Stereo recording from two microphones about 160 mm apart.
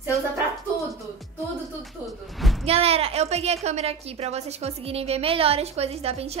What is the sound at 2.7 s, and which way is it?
A woman's voice, 40° right (ahead or behind).